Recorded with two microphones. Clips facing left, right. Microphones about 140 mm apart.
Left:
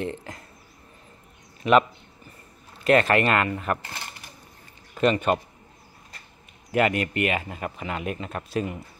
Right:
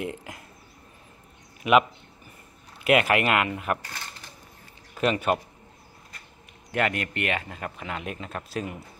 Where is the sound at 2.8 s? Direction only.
10° right (ahead or behind).